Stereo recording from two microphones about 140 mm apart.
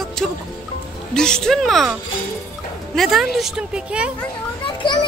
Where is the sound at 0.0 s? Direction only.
5° left (ahead or behind).